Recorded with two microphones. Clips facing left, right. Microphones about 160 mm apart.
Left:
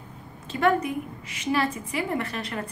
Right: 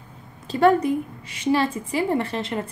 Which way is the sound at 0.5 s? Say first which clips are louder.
Right 5 dB; 35° right (ahead or behind).